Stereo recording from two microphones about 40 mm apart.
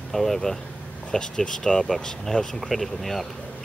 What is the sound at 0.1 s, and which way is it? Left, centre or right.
Speech, centre.